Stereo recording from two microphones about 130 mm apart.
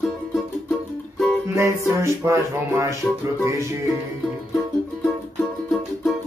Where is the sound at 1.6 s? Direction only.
25° right (ahead or behind).